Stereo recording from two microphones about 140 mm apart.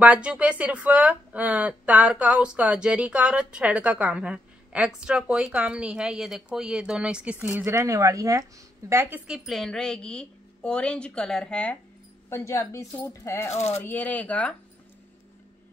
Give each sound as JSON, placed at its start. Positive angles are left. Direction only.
{"t": 0.0, "sound": "a woman's voice", "side_deg": -10}
{"t": 9.5, "sound": "a woman's voice", "side_deg": 5}
{"t": 12.3, "sound": "speech", "side_deg": 20}
{"t": 13.5, "sound": "speech", "side_deg": 50}
{"t": 13.7, "sound": "speech", "side_deg": 15}